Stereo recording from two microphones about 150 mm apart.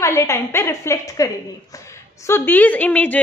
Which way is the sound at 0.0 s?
20° left (ahead or behind).